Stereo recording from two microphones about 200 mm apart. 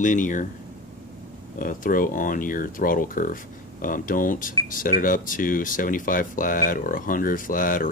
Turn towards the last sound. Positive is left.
turn(degrees=45)  # may be behind; listen again after turning